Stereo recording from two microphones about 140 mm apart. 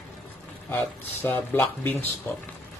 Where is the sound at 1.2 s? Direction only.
15° left (ahead or behind).